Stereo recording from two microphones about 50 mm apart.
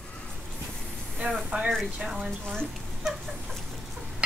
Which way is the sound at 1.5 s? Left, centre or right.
Right.